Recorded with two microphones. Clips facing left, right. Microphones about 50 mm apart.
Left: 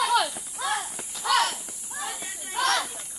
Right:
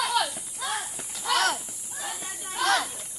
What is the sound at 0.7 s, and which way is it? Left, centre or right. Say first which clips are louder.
Crow: left 2 dB; centre.